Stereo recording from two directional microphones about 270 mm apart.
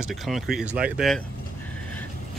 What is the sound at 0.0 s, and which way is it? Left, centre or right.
Speech, centre.